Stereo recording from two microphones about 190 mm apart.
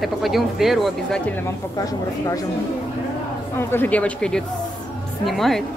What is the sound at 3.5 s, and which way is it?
A woman's voice, 10° left (ahead or behind).